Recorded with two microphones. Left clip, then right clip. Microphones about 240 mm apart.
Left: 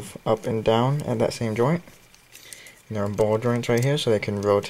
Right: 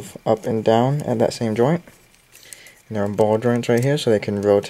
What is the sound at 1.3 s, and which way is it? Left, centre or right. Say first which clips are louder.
Speech: right 4 dB; centre.